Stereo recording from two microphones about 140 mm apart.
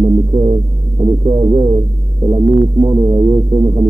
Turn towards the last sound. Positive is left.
turn(degrees=-30)  # may be behind; listen again after turning